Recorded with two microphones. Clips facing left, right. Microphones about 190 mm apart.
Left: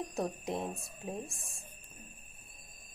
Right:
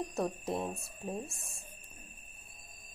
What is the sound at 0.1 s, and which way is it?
Speech, centre (ahead or behind).